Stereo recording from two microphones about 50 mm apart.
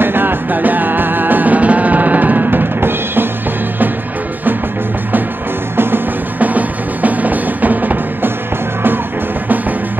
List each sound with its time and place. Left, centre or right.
0.0 s music: right
6.4 s music: right